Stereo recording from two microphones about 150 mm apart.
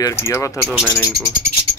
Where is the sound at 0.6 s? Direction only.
10° right (ahead or behind).